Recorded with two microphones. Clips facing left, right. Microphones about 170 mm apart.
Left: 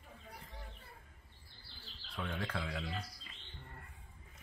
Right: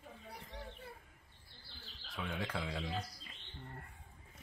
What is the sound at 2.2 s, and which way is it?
Speech, 5° right (ahead or behind).